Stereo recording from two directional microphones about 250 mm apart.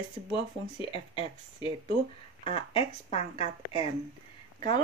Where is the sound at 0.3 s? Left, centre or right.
Left.